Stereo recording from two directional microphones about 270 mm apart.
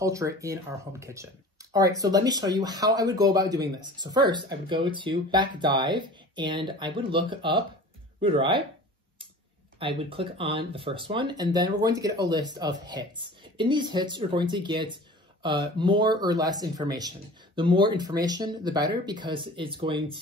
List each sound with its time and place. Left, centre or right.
0.0 s speech: centre
9.8 s speech: centre